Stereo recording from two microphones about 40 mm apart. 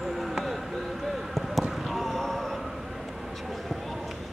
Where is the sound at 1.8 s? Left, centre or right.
Centre.